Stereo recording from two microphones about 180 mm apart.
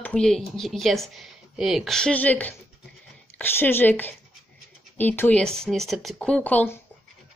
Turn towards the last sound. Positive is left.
turn(degrees=10)  # may be behind; listen again after turning